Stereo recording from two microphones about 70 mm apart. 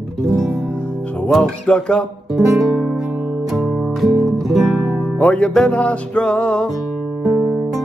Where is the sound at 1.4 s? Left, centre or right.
Centre.